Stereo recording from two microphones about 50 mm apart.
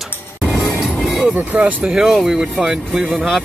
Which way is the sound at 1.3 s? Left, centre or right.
Right.